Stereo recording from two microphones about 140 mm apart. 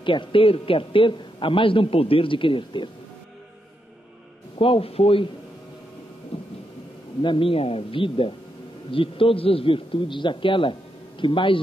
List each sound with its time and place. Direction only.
0.0 s a man's voice: 35° left (ahead or behind)
4.6 s a man's voice: 40° left (ahead or behind)
7.2 s a man's voice: 35° left (ahead or behind)